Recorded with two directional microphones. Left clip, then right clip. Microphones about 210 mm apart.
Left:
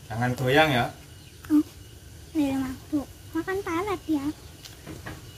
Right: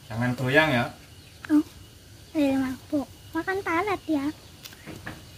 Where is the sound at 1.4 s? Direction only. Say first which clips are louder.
Even; 35° right (ahead or behind).